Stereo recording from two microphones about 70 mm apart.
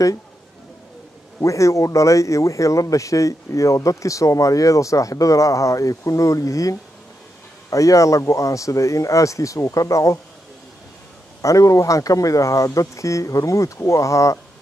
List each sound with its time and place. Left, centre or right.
1.4 s speech: left
11.4 s speech: left